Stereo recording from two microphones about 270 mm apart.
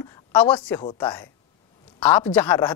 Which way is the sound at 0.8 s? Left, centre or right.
Centre.